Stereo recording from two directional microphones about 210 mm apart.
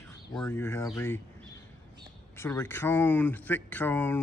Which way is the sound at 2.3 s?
10° left (ahead or behind).